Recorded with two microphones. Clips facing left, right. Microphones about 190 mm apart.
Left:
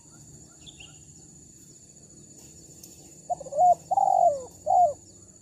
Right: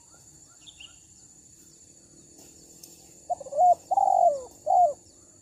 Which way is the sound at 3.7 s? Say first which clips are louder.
Even; centre (ahead or behind).